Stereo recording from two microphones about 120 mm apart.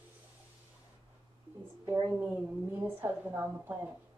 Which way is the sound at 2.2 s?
20° right (ahead or behind).